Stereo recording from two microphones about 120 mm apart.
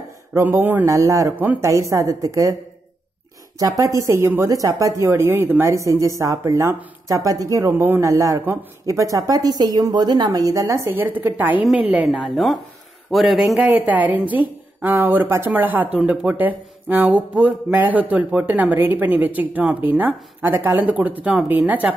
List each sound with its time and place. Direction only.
0.3 s speech: 15° right (ahead or behind)
0.8 s speech: 25° right (ahead or behind)
1.3 s speech: 15° right (ahead or behind)
3.5 s speech: 30° right (ahead or behind)
10.9 s a man's voice: 15° right (ahead or behind); by 13.6 s centre (ahead or behind)
13.6 s speech: 15° right (ahead or behind)